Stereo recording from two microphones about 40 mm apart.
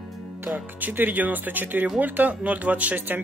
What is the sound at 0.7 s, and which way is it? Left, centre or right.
Speech, right.